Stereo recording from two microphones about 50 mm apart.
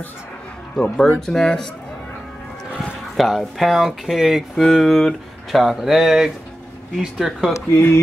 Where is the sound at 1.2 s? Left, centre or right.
Centre.